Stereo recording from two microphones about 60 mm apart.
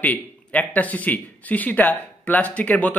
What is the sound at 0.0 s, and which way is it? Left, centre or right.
Speech, left.